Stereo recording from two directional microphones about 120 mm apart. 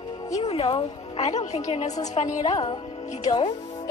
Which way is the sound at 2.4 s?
35° left (ahead or behind).